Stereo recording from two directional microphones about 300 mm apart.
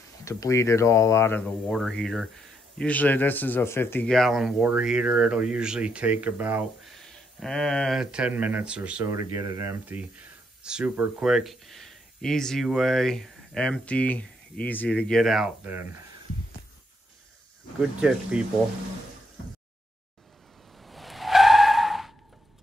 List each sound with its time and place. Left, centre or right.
0.2 s speech: centre
17.7 s speech: centre
20.8 s skidding: centre